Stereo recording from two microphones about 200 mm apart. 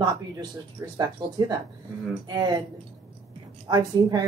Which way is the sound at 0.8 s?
15° right (ahead or behind).